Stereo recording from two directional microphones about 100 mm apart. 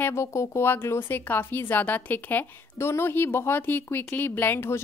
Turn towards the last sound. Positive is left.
turn(degrees=20)  # may be behind; listen again after turning